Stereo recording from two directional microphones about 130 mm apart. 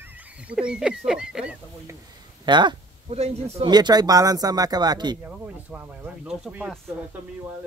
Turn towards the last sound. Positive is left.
turn(degrees=-5)  # may be behind; listen again after turning